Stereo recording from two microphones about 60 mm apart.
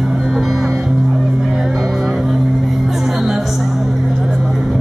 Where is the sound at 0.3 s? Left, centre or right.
Centre.